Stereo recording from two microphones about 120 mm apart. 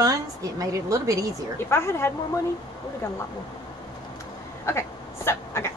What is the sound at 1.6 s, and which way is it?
Speech, 20° left (ahead or behind).